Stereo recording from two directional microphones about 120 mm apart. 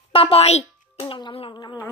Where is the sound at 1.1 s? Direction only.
45° left (ahead or behind).